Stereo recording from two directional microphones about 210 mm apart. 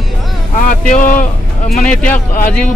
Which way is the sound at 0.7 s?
40° left (ahead or behind).